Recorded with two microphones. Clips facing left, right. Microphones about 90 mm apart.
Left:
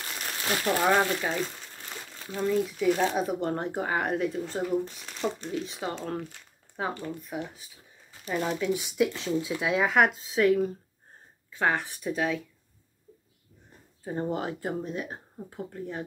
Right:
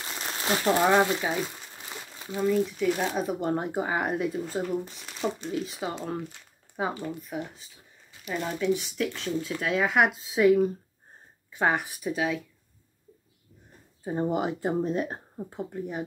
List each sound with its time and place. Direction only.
0.1 s a sound: 25° right (ahead or behind)
0.7 s speech: 10° right (ahead or behind)
2.4 s speech: centre (ahead or behind)
7.2 s speech: centre (ahead or behind)
8.7 s speech: 15° left (ahead or behind); by 12.4 s centre (ahead or behind)
14.0 s speech: 15° right (ahead or behind); by 15.4 s 40° right (ahead or behind)
15.5 s speech: 15° right (ahead or behind)